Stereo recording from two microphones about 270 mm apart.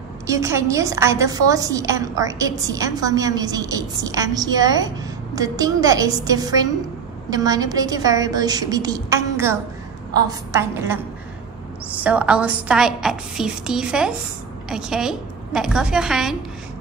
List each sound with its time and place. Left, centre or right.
0.3 s a woman's voice: centre
12.0 s a woman's voice: centre